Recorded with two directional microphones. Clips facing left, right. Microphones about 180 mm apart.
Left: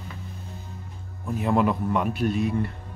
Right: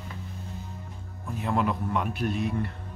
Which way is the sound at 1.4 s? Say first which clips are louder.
Left 5 dB; 5° left (ahead or behind).